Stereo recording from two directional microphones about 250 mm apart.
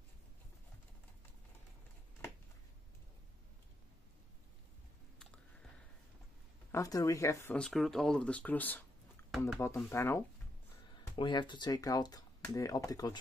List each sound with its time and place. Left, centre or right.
6.7 s speech: centre